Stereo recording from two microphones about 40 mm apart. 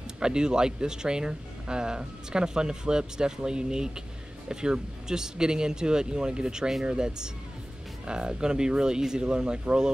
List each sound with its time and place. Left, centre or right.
0.2 s speech: centre